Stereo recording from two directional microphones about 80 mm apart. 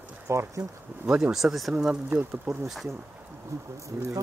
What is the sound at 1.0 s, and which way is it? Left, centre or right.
Speech, centre.